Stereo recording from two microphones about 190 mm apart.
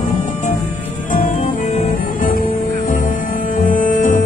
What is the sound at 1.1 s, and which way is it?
Music, 45° left (ahead or behind).